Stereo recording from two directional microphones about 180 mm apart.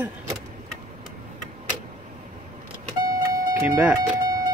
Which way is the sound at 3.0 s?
15° right (ahead or behind).